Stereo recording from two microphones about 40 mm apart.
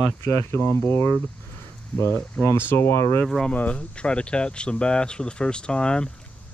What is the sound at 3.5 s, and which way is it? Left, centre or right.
Speech, left.